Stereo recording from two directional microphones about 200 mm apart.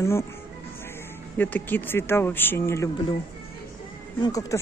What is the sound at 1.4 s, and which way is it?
Speech, 10° left (ahead or behind).